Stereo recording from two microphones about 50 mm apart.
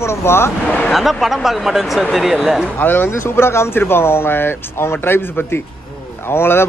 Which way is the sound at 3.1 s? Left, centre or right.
Left.